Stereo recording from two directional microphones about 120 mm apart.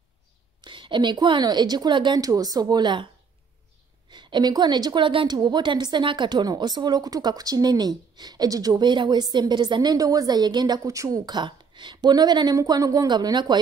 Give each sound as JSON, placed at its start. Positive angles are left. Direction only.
{"t": 0.6, "sound": "a woman's voice", "side_deg": -40}
{"t": 4.1, "sound": "a woman's voice", "side_deg": -40}
{"t": 11.2, "sound": "a woman's voice", "side_deg": -40}